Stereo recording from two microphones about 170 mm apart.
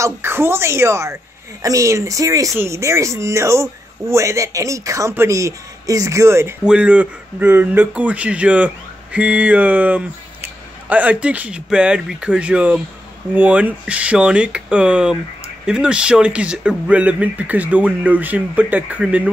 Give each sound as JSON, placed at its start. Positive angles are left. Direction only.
{"t": 0.0, "sound": "speech", "side_deg": -15}